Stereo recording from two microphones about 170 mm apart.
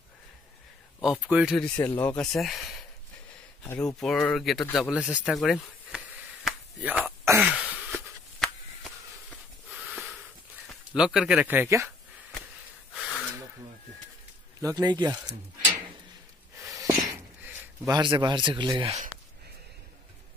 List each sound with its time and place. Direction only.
1.3 s speech: 5° right (ahead or behind)
1.9 s speech: 10° left (ahead or behind)
5.9 s a sound: 5° right (ahead or behind)
11.0 s speech: 5° right (ahead or behind)
12.9 s gasp: 5° right (ahead or behind)
14.6 s speech: 20° right (ahead or behind)
16.7 s a sound: 20° right (ahead or behind)
17.9 s speech: 25° right (ahead or behind)